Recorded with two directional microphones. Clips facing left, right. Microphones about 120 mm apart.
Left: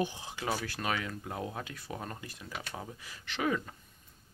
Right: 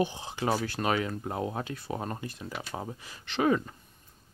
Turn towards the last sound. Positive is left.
turn(degrees=-30)  # may be behind; listen again after turning